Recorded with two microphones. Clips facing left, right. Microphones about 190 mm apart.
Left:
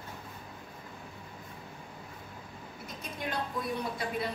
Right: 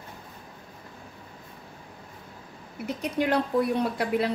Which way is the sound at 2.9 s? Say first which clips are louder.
Right 13 dB; 70° right (ahead or behind).